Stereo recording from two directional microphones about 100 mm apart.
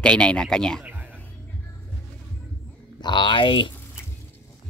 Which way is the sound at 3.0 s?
50° left (ahead or behind).